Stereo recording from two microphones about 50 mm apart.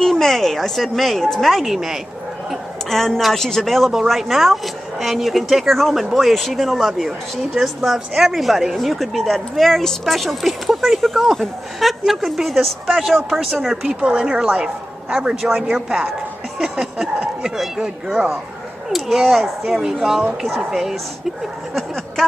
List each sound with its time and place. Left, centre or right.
0.0 s speech: centre
2.9 s speech: centre
13.8 s a woman's voice: right
15.1 s speech: centre